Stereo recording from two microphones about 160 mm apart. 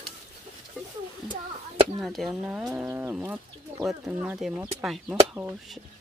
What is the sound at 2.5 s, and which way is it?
Speech, 10° right (ahead or behind).